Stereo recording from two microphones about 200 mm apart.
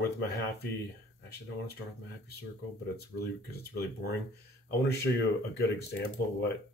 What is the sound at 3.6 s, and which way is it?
Speech, 55° left (ahead or behind).